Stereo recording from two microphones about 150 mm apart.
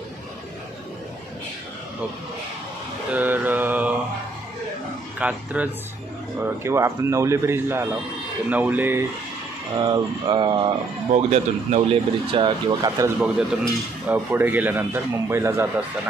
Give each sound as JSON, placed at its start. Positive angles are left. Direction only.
{"t": 3.1, "sound": "mantra", "side_deg": -10}
{"t": 5.2, "sound": "speech", "side_deg": -10}
{"t": 9.8, "sound": "speech", "side_deg": -30}
{"t": 11.1, "sound": "speech", "side_deg": -45}
{"t": 13.2, "sound": "speech", "side_deg": -10}